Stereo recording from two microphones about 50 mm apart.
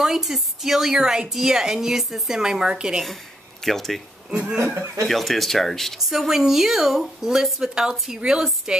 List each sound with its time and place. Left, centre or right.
0.0 s a woman's voice: centre
3.6 s speech: centre
4.3 s a woman's voice: centre
5.0 s speech: centre
6.0 s a woman's voice: centre
8.1 s a woman's voice: centre